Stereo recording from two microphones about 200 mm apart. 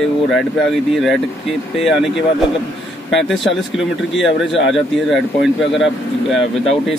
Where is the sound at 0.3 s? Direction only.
Centre (ahead or behind).